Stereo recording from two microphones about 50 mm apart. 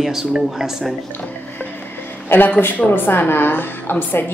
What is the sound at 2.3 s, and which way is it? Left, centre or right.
A woman's voice, left.